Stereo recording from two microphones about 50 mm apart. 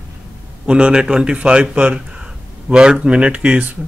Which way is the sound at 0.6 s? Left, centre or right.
Centre.